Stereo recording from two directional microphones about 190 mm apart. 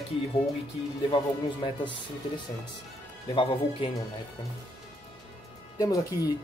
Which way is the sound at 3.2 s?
30° left (ahead or behind).